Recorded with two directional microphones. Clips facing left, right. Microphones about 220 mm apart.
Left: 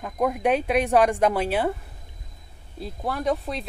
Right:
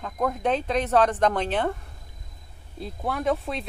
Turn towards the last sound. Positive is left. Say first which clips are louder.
# even
turn(degrees=0)  # may be behind; listen again after turning